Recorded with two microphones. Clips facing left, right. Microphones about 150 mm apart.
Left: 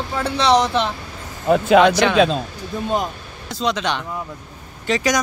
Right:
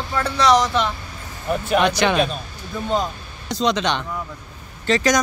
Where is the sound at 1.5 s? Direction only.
90° left.